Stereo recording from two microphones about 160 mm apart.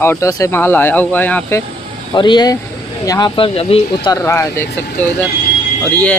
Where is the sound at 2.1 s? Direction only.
30° left (ahead or behind).